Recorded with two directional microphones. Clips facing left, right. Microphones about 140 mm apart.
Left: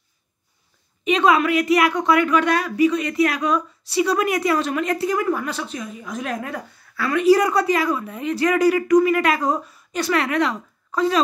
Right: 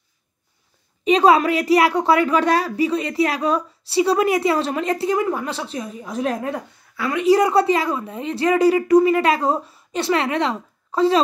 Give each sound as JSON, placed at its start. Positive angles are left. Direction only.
{"t": 1.0, "sound": "a woman's voice", "side_deg": -35}